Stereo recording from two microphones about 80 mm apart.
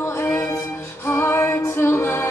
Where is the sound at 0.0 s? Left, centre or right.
Left.